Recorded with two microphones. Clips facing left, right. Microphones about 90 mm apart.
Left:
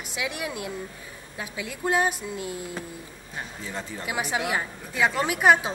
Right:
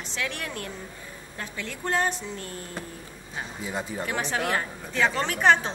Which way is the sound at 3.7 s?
15° right (ahead or behind).